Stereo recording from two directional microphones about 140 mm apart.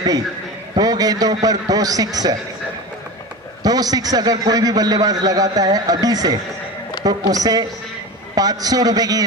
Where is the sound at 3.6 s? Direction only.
25° right (ahead or behind).